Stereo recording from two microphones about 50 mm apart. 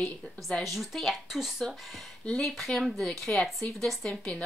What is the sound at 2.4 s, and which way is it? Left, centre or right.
A woman's voice, centre.